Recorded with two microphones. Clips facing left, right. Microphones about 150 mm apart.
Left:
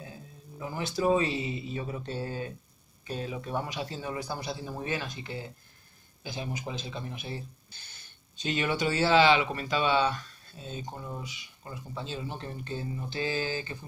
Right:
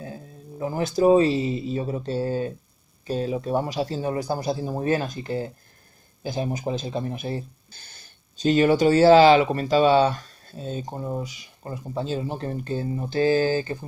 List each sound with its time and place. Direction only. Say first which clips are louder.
0.0 s speech: right 8 dB; 40° right (ahead or behind)